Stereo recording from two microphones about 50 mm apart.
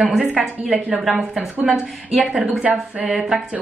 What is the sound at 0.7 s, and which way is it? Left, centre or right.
Speech, right.